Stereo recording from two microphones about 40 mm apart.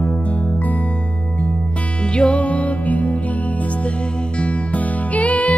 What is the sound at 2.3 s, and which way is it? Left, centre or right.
Music, left.